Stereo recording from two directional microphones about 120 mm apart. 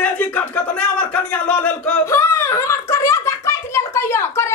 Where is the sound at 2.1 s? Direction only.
20° left (ahead or behind).